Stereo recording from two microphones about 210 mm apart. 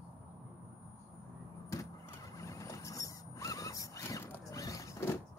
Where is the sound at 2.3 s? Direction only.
15° left (ahead or behind).